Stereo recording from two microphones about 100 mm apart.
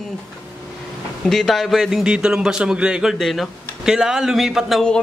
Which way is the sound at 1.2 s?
5° left (ahead or behind).